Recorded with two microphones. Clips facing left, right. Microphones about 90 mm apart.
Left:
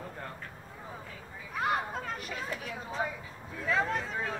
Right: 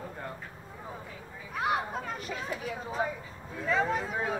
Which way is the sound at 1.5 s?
5° right (ahead or behind).